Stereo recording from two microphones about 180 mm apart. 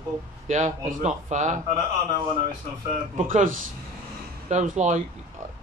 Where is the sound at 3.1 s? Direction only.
45° right (ahead or behind).